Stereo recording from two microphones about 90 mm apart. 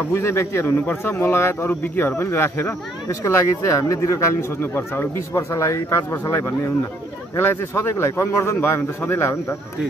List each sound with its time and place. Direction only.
0.1 s speech: 30° left (ahead or behind)